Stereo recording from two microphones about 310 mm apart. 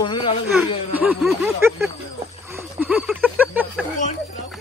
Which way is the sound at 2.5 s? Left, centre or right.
Centre.